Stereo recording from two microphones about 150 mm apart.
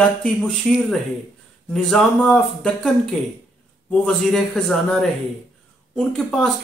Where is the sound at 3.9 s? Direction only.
5° left (ahead or behind).